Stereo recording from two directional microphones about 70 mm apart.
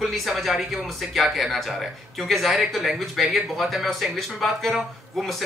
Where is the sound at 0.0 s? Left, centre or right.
Centre.